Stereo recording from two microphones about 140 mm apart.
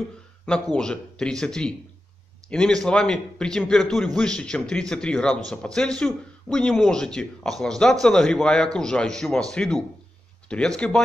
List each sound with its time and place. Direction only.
0.7 s a man's voice: 5° left (ahead or behind)